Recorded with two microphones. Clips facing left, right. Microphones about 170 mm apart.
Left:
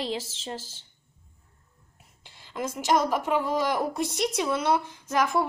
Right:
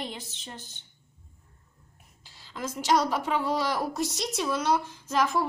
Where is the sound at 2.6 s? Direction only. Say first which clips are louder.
Left 1 dB; 55° left (ahead or behind).